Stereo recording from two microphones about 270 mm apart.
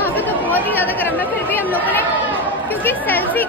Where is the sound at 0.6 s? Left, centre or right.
Centre.